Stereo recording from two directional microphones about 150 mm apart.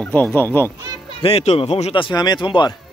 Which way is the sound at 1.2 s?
40° left (ahead or behind).